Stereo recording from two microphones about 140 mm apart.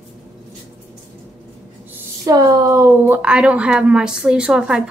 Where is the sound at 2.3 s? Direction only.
25° right (ahead or behind).